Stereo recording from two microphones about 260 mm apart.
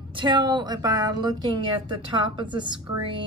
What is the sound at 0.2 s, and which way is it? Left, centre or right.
A woman's voice, centre.